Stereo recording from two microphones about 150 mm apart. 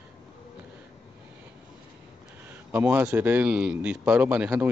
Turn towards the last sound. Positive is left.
turn(degrees=-10)  # may be behind; listen again after turning